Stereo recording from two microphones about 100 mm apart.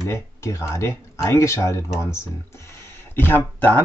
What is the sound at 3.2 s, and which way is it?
Speech, 20° left (ahead or behind).